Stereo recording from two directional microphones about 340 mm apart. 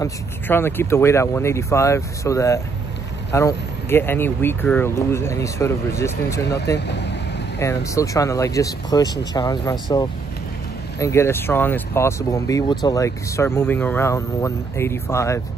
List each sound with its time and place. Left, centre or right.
0.0 s speech: centre
6.9 s vehicle: left
7.5 s speech: centre